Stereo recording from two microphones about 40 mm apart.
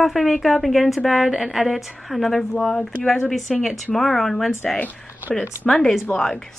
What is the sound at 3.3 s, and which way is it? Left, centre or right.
A woman's voice, centre.